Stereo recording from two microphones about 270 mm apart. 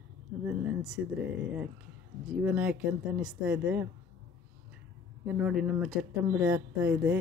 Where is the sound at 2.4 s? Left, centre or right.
Centre.